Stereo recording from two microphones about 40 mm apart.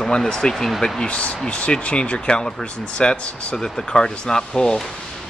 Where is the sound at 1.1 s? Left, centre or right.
Left.